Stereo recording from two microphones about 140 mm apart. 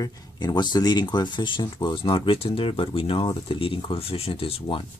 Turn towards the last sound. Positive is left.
turn(degrees=45)  # may be behind; listen again after turning